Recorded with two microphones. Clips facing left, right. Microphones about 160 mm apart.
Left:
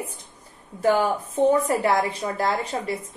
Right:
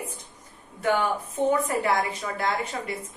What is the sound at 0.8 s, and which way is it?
A woman's voice, 30° left (ahead or behind).